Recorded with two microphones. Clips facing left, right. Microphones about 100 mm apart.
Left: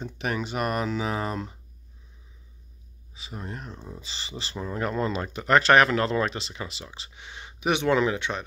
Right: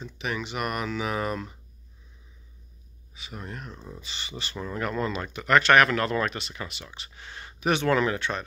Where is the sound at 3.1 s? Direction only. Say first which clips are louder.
Left 1 dB; 30° left (ahead or behind).